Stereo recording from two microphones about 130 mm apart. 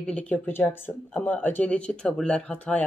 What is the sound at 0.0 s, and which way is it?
Speech, 10° left (ahead or behind).